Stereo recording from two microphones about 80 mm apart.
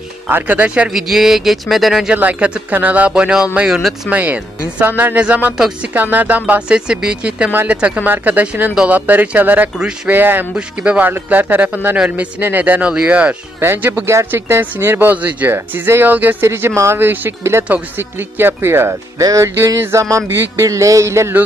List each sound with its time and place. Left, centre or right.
0.3 s speech: right
0.9 s speech: centre
2.1 s speech: centre
4.1 s speech: right
9.8 s speech: centre
10.1 s speech: right
10.5 s speech: centre
13.6 s speech: right
19.1 s speech: right